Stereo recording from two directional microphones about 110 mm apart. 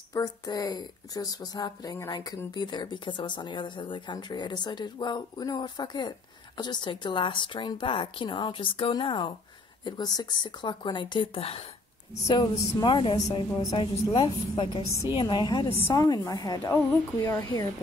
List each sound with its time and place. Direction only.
0.1 s speech: 35° left (ahead or behind)
9.8 s speech: 40° left (ahead or behind); by 11.6 s 60° left (ahead or behind)
12.3 s a woman's voice: 40° left (ahead or behind)